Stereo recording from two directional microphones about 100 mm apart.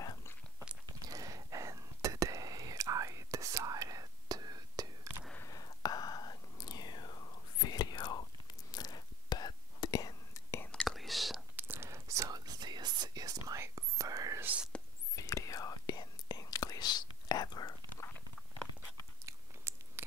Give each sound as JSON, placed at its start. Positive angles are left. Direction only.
{"t": 0.0, "sound": "biting", "side_deg": 35}
{"t": 1.0, "sound": "whispering", "side_deg": -35}
{"t": 5.4, "sound": "whispering", "side_deg": 40}
{"t": 10.9, "sound": "whispering", "side_deg": 0}
{"t": 11.5, "sound": "whispering", "side_deg": -20}
{"t": 14.4, "sound": "whispering", "side_deg": -15}
{"t": 15.1, "sound": "whispering", "side_deg": 35}
{"t": 18.8, "sound": "biting", "side_deg": -25}